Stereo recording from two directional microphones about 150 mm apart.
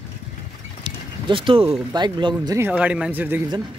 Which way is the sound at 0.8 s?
30° right (ahead or behind).